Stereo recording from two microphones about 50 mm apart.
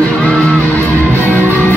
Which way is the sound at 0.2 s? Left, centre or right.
Left.